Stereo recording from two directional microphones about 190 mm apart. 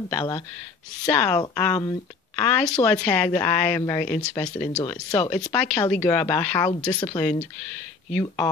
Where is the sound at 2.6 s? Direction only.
5° left (ahead or behind).